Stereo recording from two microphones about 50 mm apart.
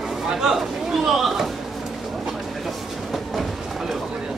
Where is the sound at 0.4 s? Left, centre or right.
Centre.